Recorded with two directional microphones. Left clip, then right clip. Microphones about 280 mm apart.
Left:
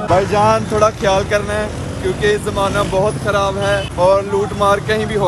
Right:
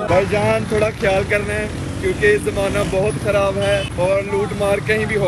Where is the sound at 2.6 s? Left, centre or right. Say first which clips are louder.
Left 3 dB; centre.